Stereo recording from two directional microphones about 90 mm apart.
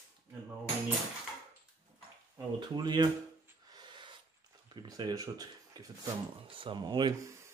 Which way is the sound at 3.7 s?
60° right (ahead or behind).